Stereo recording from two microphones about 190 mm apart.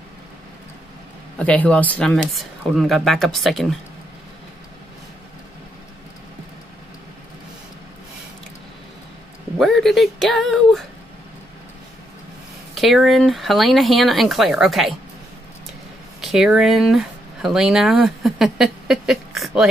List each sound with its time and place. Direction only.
1.4 s speech: 5° left (ahead or behind)
9.6 s speech: centre (ahead or behind)
12.7 s speech: centre (ahead or behind)
16.2 s speech: centre (ahead or behind)